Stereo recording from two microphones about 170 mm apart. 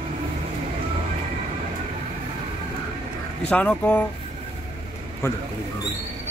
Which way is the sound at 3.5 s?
10° left (ahead or behind).